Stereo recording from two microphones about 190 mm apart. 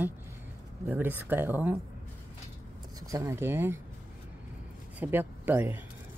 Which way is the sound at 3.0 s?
15° right (ahead or behind).